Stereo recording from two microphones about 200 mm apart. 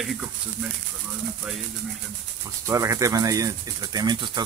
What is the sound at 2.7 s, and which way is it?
Speech, 15° right (ahead or behind).